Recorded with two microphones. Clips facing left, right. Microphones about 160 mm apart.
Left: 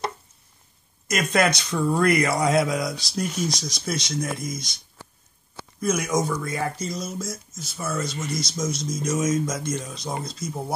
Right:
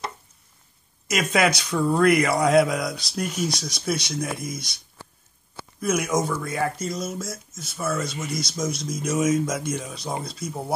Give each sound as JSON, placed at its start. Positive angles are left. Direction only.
{"t": 1.0, "sound": "a man's voice", "side_deg": -5}
{"t": 3.4, "sound": "speech", "side_deg": -60}
{"t": 3.7, "sound": "a man's voice", "side_deg": -5}
{"t": 5.8, "sound": "a man's voice", "side_deg": -5}